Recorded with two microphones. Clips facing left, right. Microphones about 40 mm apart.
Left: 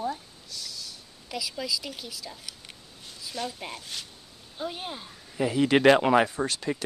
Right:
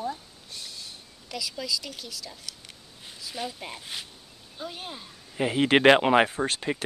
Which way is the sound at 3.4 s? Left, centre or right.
Centre.